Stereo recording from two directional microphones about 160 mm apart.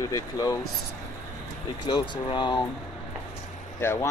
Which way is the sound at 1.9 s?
30° left (ahead or behind).